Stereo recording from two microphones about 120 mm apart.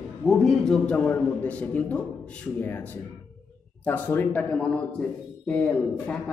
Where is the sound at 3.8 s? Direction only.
15° left (ahead or behind).